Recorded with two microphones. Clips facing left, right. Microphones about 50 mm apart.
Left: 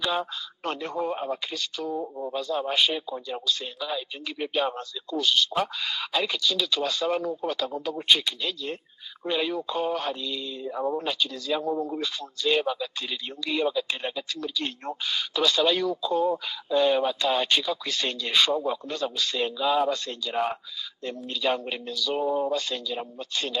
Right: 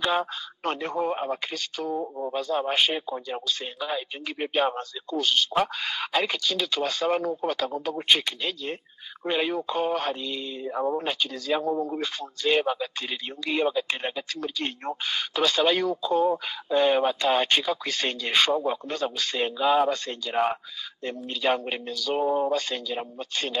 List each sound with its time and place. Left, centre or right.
0.7 s speech: right
2.0 s speech: right
8.4 s speech: right